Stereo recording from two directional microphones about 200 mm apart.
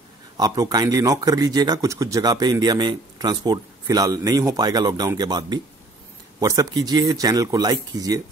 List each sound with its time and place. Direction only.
0.4 s speech: 20° right (ahead or behind)